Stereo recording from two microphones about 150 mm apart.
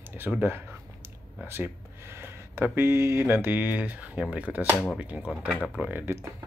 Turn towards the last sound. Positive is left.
turn(degrees=-10)  # may be behind; listen again after turning